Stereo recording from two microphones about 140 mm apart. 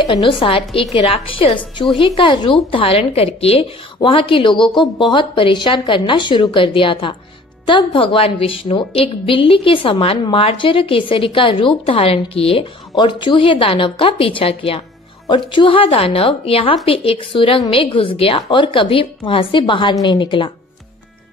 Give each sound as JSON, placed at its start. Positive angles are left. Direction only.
{"t": 0.2, "sound": "a woman's voice", "side_deg": 40}